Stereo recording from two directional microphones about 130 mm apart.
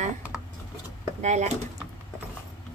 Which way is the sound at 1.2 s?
65° right (ahead or behind).